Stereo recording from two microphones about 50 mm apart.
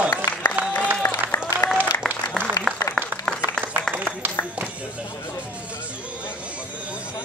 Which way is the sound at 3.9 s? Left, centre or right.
Right.